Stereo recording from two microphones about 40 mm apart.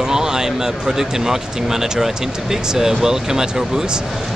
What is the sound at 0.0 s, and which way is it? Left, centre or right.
Speech, centre.